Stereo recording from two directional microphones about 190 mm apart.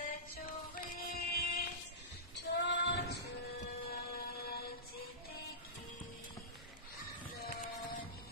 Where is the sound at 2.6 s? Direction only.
65° left (ahead or behind).